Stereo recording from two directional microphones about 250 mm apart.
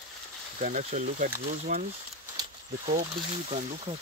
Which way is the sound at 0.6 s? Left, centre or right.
Right.